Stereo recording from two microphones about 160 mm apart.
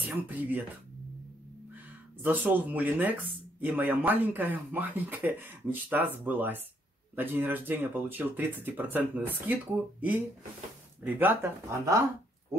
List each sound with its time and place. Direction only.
0.0 s speech: 10° right (ahead or behind)
2.2 s speech: 10° right (ahead or behind)